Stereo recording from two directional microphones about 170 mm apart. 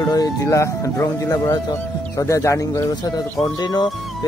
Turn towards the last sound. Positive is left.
turn(degrees=25)  # may be behind; listen again after turning